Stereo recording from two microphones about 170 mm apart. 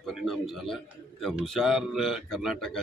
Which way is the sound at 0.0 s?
Centre (ahead or behind).